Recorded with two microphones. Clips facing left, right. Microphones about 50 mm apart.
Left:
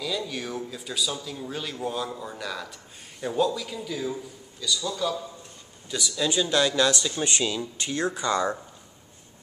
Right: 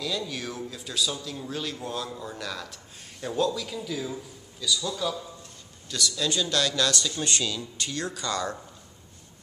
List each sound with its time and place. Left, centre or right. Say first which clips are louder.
0.0 s speech: left 1 dB; centre
5.9 s speech: left 1 dB; centre